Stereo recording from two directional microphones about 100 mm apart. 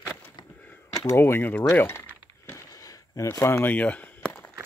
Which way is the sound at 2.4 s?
30° left (ahead or behind).